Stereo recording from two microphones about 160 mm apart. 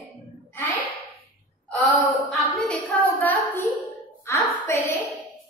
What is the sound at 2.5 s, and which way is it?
A woman's voice, 10° left (ahead or behind).